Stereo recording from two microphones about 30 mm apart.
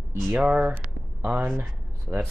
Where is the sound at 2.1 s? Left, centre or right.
Right.